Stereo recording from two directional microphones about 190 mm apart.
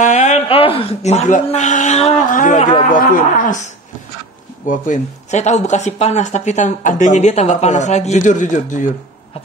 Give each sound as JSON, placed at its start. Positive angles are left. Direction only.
{"t": 0.0, "sound": "speech", "side_deg": 35}